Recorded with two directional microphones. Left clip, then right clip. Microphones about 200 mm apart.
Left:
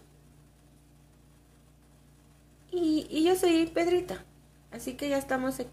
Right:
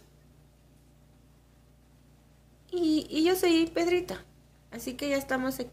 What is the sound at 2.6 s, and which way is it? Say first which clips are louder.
Speech: right 1 dB; 10° right (ahead or behind).